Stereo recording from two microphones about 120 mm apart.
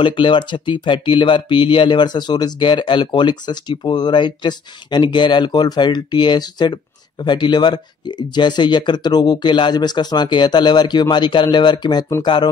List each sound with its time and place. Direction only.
0.0 s speech: 45° left (ahead or behind)